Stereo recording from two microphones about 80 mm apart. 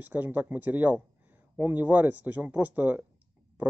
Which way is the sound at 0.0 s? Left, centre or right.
Right.